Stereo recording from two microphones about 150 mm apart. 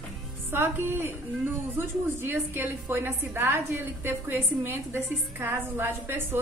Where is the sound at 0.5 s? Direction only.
15° right (ahead or behind).